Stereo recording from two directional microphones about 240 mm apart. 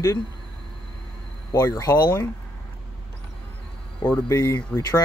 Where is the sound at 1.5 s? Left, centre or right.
Centre.